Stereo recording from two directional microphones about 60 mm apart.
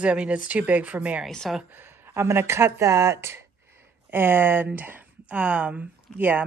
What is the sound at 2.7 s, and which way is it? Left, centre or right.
Speech, right.